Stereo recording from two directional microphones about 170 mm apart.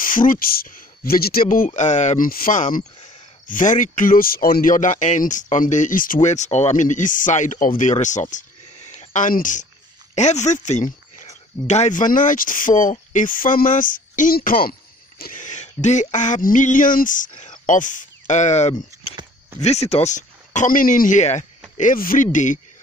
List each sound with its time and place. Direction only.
0.0 s speech: 55° left (ahead or behind)